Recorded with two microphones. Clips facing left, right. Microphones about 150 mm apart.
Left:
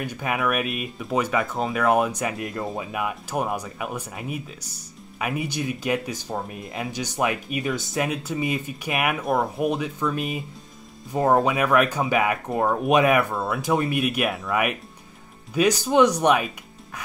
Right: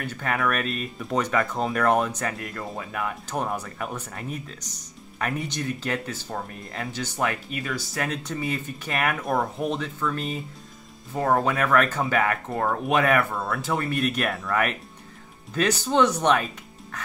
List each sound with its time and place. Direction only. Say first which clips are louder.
0.0 s speech: left 1 dB; 10° left (ahead or behind)
8.1 s speech: left 3 dB; 10° left (ahead or behind)
11.1 s speech: left 3 dB; 25° left (ahead or behind)
11.4 s speech: left 2 dB; 10° left (ahead or behind)
13.3 s speech: left 2 dB; centre (ahead or behind)
13.6 s speech: left 4 dB; 15° left (ahead or behind)